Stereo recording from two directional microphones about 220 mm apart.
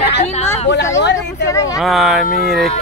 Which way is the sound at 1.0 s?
50° left (ahead or behind).